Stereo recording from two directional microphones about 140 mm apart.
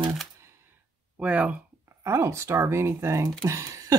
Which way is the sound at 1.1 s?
10° right (ahead or behind).